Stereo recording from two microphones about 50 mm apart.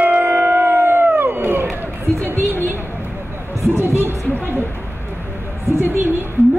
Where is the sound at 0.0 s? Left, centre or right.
Right.